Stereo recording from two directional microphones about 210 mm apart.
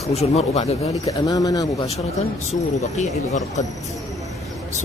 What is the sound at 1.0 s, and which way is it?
Speech, 15° left (ahead or behind).